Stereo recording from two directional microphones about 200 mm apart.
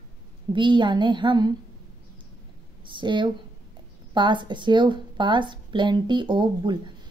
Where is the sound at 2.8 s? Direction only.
25° right (ahead or behind).